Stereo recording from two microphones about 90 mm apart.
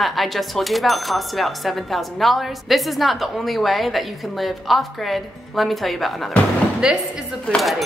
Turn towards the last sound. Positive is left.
turn(degrees=0)  # may be behind; listen again after turning